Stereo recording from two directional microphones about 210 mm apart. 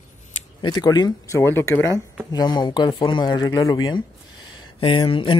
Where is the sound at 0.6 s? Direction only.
20° left (ahead or behind).